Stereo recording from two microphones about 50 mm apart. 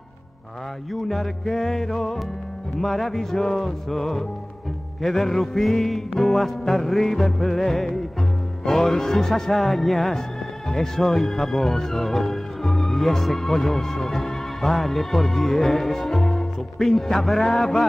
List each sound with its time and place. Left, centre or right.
1.0 s music: centre
10.7 s speech: centre